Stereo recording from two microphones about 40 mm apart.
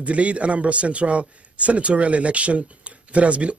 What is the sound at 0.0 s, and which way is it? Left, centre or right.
Speech, right.